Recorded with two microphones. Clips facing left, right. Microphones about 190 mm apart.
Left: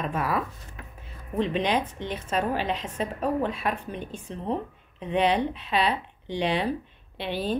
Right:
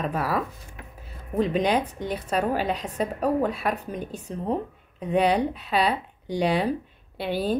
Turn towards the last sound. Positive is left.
turn(degrees=-40)  # may be behind; listen again after turning